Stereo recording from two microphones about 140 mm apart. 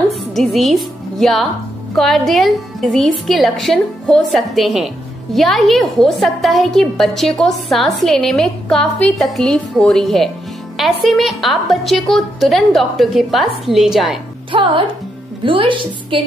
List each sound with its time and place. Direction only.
0.1 s a woman's voice: centre (ahead or behind)
14.5 s speech: 35° right (ahead or behind)